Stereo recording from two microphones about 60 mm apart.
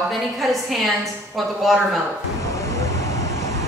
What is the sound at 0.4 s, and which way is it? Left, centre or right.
A woman's voice, centre.